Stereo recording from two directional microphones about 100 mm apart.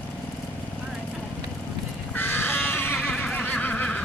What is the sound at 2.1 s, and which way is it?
Neigh, 20° left (ahead or behind).